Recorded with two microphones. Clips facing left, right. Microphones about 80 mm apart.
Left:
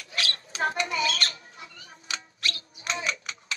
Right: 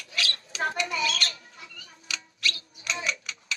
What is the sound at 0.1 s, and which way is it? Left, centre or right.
Mouse, left.